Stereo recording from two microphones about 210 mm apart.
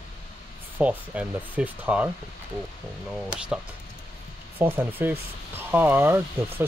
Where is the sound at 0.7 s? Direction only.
5° right (ahead or behind).